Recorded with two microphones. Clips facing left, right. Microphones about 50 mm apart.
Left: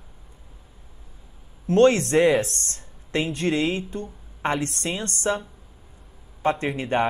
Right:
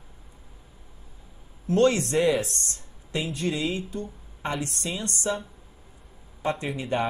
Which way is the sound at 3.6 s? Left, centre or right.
Left.